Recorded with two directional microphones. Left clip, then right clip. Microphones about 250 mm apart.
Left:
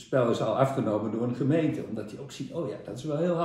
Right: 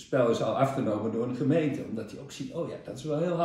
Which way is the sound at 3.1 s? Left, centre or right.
Centre.